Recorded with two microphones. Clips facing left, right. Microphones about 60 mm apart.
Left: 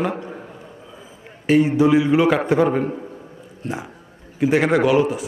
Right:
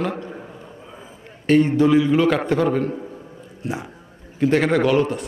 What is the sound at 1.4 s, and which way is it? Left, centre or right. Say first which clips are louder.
A man's voice: even; centre.